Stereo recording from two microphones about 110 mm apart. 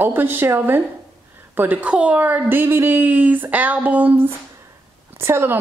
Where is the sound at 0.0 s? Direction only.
20° right (ahead or behind).